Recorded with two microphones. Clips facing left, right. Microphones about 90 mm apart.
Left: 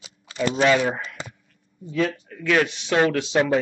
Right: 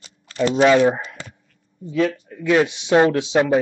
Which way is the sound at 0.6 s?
25° right (ahead or behind).